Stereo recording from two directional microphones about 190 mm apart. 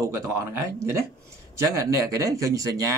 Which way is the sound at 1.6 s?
15° right (ahead or behind).